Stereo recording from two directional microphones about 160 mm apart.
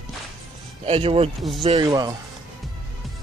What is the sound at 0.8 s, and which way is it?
Speech, 35° right (ahead or behind).